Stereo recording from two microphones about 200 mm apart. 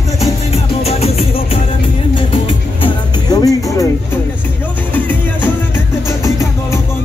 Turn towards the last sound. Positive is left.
turn(degrees=10)  # may be behind; listen again after turning